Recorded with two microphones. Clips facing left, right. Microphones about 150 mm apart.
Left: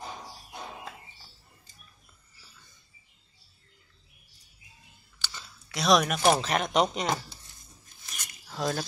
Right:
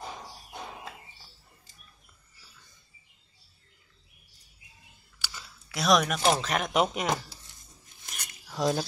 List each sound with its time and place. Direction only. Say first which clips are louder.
5.2 s a sound: even; 5° right (ahead or behind)
6.1 s speech: left 2 dB; 10° left (ahead or behind)
8.5 s speech: right 3 dB; 15° right (ahead or behind)